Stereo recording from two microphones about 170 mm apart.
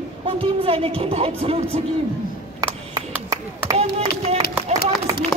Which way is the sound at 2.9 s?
20° right (ahead or behind).